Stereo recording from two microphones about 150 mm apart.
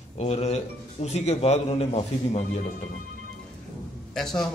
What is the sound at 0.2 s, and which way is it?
A man's voice, 45° left (ahead or behind).